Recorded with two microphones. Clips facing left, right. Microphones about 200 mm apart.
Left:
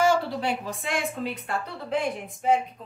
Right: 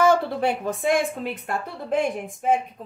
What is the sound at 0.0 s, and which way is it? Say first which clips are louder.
A woman's voice: right 4 dB; 55° right (ahead or behind).